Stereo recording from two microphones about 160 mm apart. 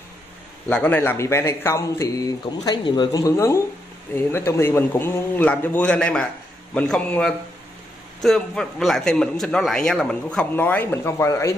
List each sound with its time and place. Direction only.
0.7 s a man's voice: 10° left (ahead or behind)